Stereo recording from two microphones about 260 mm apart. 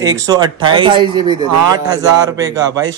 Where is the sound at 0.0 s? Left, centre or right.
Centre.